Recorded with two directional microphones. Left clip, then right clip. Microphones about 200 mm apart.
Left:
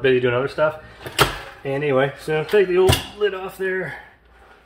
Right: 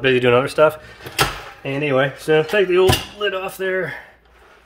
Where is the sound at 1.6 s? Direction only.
45° right (ahead or behind).